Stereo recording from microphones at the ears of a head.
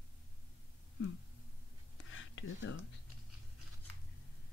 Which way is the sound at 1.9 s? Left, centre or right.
Left.